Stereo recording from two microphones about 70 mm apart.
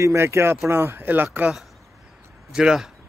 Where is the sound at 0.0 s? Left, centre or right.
Right.